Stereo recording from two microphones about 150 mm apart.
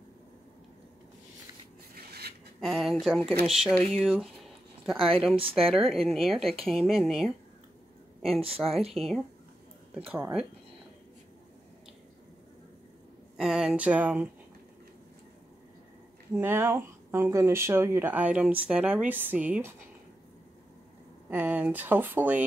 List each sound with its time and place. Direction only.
2.0 s a sound: 90° right
2.6 s a woman's voice: centre (ahead or behind)
8.5 s a woman's voice: centre (ahead or behind)
9.9 s speech: 15° right (ahead or behind)
13.4 s speech: 5° right (ahead or behind)
16.3 s speech: 15° right (ahead or behind)
21.3 s speech: 10° right (ahead or behind)